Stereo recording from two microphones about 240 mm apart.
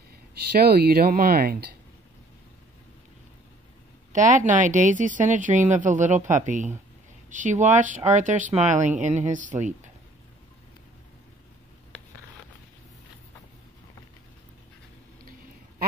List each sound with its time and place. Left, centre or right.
0.1 s speech: right
4.1 s speech: right